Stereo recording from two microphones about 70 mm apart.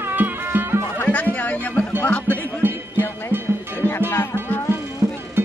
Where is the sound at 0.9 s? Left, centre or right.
Left.